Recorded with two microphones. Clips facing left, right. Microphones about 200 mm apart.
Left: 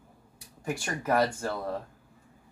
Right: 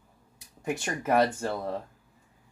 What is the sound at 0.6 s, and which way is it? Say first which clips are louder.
Speech: right 2 dB; 20° right (ahead or behind).